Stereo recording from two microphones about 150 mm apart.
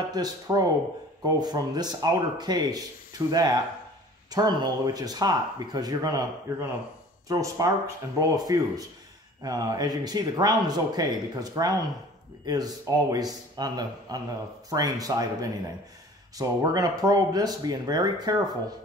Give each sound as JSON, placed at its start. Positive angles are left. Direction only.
{"t": 0.1, "sound": "speech", "side_deg": -25}